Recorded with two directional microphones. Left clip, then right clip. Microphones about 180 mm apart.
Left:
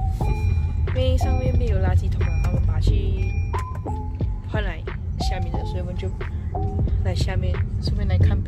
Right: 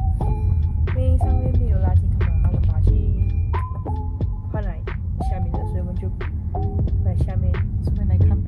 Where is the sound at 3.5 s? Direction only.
Centre (ahead or behind).